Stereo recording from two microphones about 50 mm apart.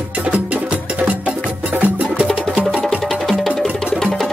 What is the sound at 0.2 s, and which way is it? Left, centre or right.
Music, right.